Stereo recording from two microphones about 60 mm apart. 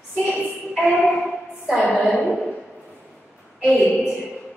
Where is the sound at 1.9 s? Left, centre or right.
Centre.